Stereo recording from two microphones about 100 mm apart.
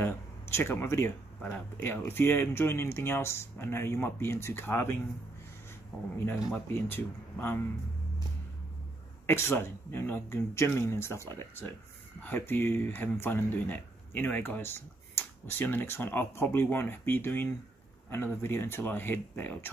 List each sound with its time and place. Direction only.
0.0 s speech: 25° left (ahead or behind)
6.1 s speech: 20° left (ahead or behind)
9.2 s speech: 25° left (ahead or behind)